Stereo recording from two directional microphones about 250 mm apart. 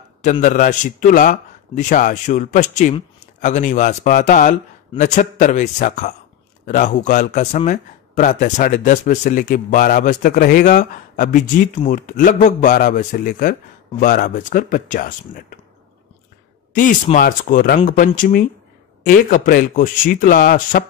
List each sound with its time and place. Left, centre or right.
0.2 s speech: left
16.7 s speech: left